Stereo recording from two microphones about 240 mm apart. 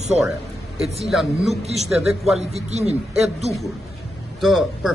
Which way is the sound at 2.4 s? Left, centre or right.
Right.